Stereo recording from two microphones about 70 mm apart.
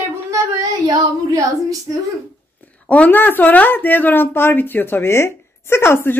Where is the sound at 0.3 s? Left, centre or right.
Right.